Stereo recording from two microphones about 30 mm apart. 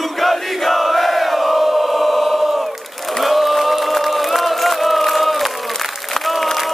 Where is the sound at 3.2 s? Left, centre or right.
Centre.